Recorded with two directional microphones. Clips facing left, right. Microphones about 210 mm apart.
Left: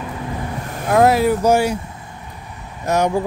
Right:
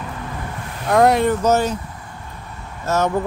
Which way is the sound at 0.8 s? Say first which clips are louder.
Left 1 dB; 5° left (ahead or behind).